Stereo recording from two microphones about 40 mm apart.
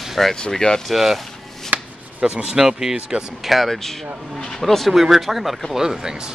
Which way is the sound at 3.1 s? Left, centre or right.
Right.